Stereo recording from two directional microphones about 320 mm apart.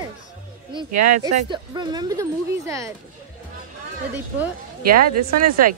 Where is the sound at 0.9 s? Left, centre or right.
Right.